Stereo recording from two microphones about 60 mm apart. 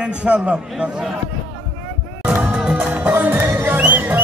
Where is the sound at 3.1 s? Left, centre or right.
Right.